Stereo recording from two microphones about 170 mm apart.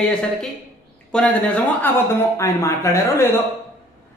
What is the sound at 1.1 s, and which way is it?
A man's voice, 5° left (ahead or behind).